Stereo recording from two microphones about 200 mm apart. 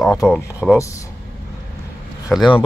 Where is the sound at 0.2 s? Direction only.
10° left (ahead or behind).